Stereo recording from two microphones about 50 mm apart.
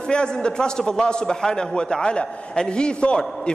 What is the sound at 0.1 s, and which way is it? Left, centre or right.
A man's voice, centre.